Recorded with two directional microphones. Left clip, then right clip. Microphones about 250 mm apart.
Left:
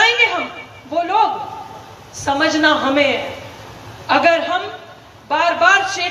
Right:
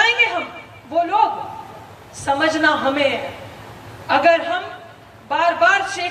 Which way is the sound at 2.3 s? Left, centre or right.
Centre.